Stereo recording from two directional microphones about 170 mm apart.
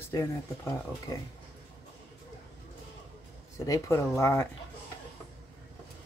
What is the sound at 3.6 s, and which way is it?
Speech, 20° left (ahead or behind).